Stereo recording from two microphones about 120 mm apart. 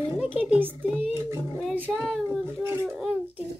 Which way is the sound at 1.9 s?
5° right (ahead or behind).